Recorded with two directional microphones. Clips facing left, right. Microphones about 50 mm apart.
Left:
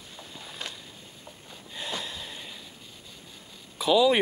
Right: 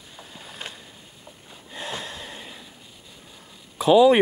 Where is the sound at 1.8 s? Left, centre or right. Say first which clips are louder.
Right 2 dB; right.